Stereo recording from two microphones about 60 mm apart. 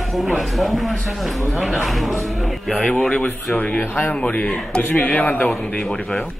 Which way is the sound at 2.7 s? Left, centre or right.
Left.